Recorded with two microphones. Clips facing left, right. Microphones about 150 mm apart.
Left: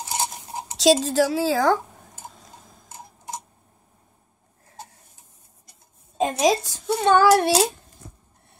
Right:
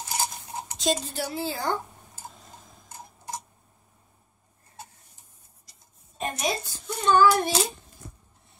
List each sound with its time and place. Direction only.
0.1 s cutlery: 25° left (ahead or behind)
0.7 s a woman's voice: 90° left
6.1 s a child's voice: 90° left